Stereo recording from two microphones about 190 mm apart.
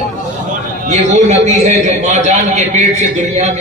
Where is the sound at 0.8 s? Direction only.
35° right (ahead or behind).